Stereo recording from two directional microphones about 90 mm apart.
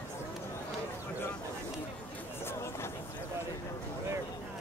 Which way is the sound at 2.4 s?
30° left (ahead or behind).